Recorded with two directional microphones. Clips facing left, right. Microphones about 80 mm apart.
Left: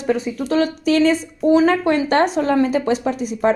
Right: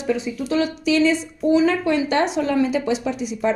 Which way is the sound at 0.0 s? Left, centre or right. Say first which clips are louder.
Left 3 dB; left.